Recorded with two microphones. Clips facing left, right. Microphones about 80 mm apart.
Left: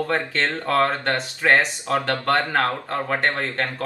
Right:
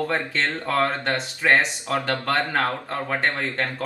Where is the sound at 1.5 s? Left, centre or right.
Centre.